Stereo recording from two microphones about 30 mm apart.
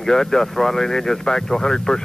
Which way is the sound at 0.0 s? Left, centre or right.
Centre.